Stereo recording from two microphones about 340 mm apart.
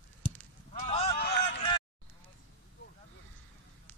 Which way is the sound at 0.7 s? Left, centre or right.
Centre.